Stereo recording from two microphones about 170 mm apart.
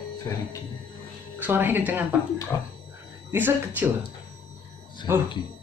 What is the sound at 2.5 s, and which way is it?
Speech, 20° left (ahead or behind).